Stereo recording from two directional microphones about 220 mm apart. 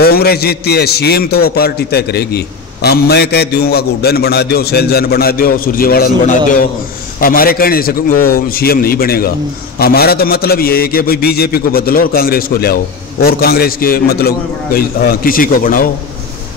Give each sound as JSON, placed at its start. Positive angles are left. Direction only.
{"t": 0.0, "sound": "a man's voice", "side_deg": 45}